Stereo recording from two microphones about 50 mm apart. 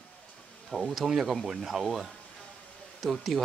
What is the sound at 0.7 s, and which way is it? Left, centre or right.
Speech, centre.